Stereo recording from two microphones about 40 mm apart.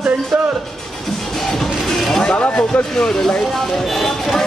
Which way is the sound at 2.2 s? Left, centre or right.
Left.